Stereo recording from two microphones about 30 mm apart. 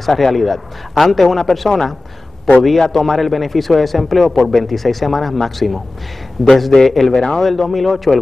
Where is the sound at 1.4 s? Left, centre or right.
Centre.